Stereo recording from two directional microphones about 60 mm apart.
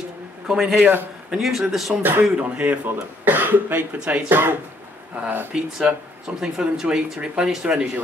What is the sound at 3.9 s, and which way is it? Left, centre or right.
Speech, centre.